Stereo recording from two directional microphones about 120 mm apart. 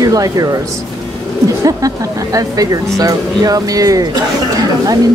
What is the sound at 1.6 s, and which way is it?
Speech, 30° right (ahead or behind).